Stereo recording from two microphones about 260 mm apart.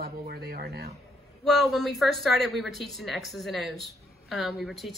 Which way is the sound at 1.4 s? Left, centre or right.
Centre.